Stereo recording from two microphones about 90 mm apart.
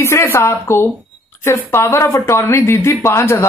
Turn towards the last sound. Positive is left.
turn(degrees=30)  # may be behind; listen again after turning